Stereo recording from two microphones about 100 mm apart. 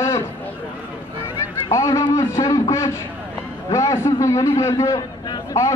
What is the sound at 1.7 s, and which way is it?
A man's voice, 35° left (ahead or behind).